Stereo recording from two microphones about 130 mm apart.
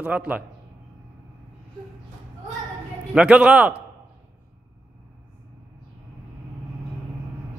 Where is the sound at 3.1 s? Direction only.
10° right (ahead or behind).